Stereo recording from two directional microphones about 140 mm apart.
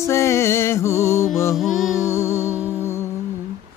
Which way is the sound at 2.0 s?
20° left (ahead or behind).